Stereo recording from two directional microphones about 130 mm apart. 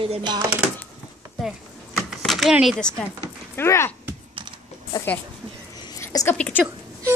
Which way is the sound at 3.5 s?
20° left (ahead or behind).